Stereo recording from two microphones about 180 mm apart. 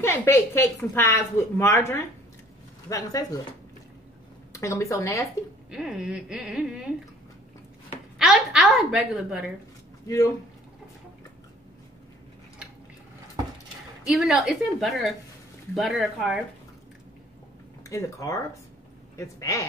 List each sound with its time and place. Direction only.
0.0 s a woman's voice: 15° left (ahead or behind)
4.5 s speech: 15° left (ahead or behind)
5.7 s speech: 5° right (ahead or behind)
8.2 s a woman's voice: centre (ahead or behind)
10.0 s a woman's voice: 20° left (ahead or behind)
14.0 s speech: 5° right (ahead or behind)
17.8 s a woman's voice: 15° left (ahead or behind)